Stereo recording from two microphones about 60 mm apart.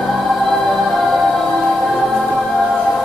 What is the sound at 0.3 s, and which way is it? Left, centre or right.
Choir, centre.